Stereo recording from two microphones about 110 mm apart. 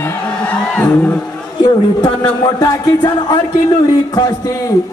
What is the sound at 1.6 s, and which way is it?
A man's voice, 35° left (ahead or behind).